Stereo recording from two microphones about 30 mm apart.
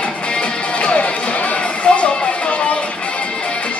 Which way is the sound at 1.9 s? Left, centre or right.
Left.